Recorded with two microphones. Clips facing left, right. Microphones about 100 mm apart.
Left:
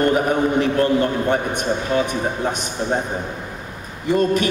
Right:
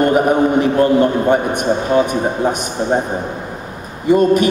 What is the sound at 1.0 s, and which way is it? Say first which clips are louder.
Speech: right 6 dB; 15° right (ahead or behind).